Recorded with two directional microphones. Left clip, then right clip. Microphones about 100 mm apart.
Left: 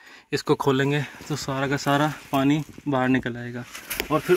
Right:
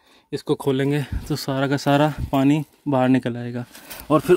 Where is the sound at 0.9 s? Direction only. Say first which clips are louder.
Right 2 dB; 50° right (ahead or behind).